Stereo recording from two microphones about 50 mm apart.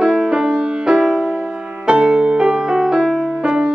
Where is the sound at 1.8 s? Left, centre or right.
Right.